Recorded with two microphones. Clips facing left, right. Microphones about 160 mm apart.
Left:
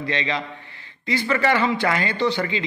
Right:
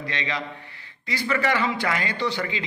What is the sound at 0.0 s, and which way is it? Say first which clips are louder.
A man's voice: left 4 dB; 25° left (ahead or behind).